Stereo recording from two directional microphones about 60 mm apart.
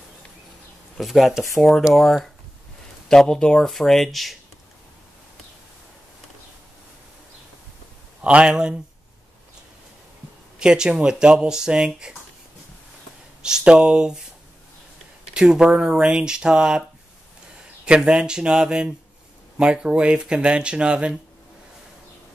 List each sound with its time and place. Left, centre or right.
0.9 s speech: centre
8.2 s speech: centre
10.6 s speech: centre
13.4 s speech: centre
15.3 s speech: centre
17.8 s speech: centre